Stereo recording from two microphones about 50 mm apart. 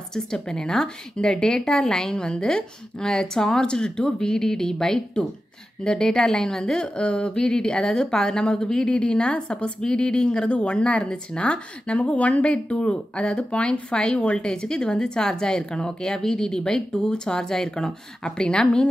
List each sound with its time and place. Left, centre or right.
0.1 s a woman's voice: centre